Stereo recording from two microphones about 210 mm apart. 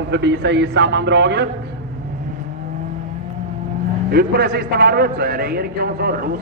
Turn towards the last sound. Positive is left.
turn(degrees=-45)  # may be behind; listen again after turning